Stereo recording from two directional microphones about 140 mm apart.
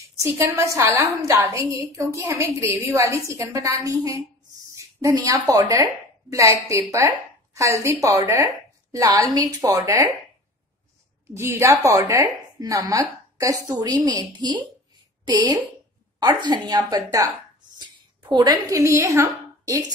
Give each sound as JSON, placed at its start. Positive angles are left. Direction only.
{"t": 0.2, "sound": "a woman's voice", "side_deg": -20}
{"t": 11.3, "sound": "a woman's voice", "side_deg": -20}
{"t": 18.3, "sound": "a woman's voice", "side_deg": -30}